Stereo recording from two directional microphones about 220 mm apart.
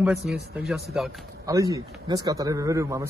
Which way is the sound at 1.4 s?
15° right (ahead or behind).